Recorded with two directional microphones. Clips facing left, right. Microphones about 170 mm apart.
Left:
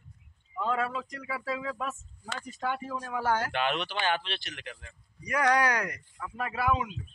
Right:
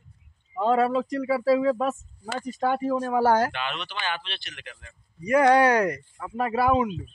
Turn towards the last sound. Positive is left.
turn(degrees=-35)  # may be behind; listen again after turning